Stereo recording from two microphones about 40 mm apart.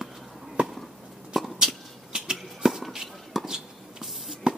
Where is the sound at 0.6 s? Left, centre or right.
Right.